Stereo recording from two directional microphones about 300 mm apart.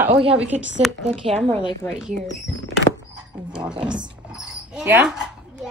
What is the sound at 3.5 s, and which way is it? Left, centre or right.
A child's voice, centre.